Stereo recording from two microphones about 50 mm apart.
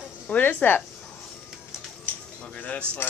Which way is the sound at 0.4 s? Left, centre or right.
Left.